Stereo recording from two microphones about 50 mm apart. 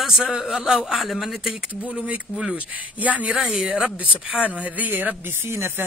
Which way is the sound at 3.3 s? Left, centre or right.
Centre.